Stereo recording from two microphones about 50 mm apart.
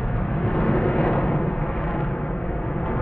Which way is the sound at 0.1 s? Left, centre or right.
Centre.